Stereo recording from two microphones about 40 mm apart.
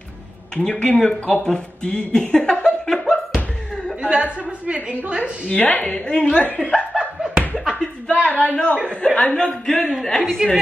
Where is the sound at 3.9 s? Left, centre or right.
Right.